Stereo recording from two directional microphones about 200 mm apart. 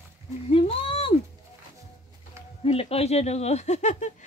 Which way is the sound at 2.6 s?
30° left (ahead or behind).